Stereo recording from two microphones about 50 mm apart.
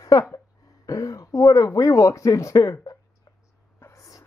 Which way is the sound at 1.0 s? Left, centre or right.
Left.